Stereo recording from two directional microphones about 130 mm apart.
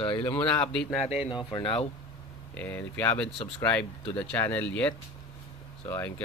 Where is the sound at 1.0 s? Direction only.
45° left (ahead or behind).